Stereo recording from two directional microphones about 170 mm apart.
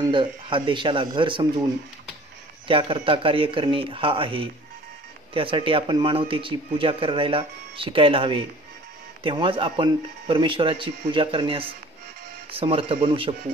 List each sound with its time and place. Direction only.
0.1 s speech: 30° right (ahead or behind)
2.7 s speech: 30° right (ahead or behind)